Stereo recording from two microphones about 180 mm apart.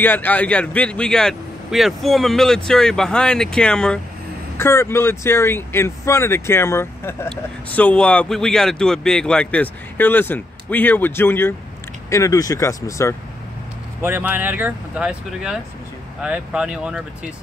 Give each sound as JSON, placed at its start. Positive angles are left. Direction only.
{"t": 0.0, "sound": "speech", "side_deg": 10}
{"t": 14.0, "sound": "speech", "side_deg": -10}